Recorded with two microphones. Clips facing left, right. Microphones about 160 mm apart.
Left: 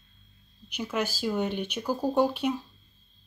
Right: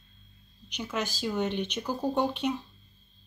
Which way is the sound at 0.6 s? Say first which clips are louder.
Left 3 dB; 10° left (ahead or behind).